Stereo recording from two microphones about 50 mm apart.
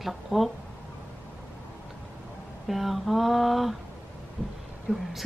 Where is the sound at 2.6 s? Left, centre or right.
Centre.